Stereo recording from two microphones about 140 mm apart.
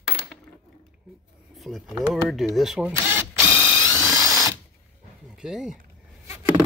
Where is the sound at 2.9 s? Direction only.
15° right (ahead or behind).